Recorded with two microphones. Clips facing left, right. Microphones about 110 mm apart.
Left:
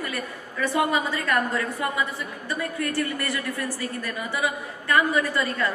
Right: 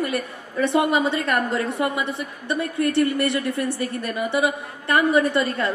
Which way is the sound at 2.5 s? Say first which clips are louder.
Right 7 dB; 25° right (ahead or behind).